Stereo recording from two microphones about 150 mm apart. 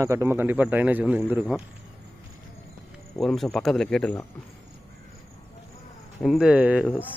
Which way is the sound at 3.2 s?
Centre (ahead or behind).